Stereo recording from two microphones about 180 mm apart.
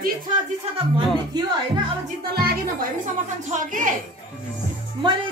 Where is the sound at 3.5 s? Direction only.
45° right (ahead or behind).